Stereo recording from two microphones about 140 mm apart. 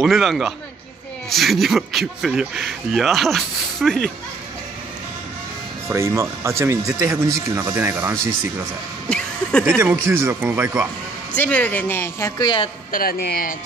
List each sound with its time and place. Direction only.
0.0 s speech: centre (ahead or behind)
5.9 s speech: 20° right (ahead or behind)
9.1 s a sound: 5° left (ahead or behind)
9.8 s speech: 15° right (ahead or behind)
11.3 s speech: 10° left (ahead or behind); by 12.6 s 30° left (ahead or behind)
12.9 s speech: 90° left